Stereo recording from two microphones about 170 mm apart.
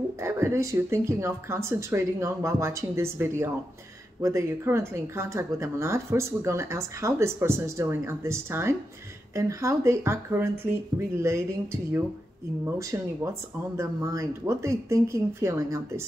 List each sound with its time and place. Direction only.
0.2 s speech: 15° right (ahead or behind)